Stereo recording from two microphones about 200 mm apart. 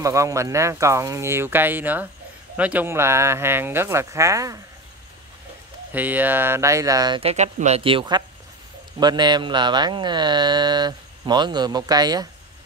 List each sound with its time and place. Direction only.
0.0 s speech: 15° right (ahead or behind)
5.9 s speech: 10° right (ahead or behind)